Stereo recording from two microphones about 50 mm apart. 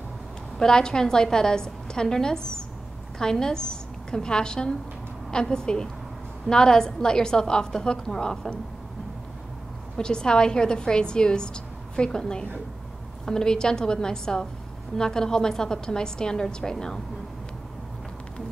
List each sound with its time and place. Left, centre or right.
0.6 s a woman's voice: centre
9.9 s a woman's voice: centre